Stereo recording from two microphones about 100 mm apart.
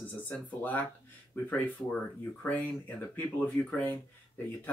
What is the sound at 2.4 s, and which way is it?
Speech, 15° left (ahead or behind).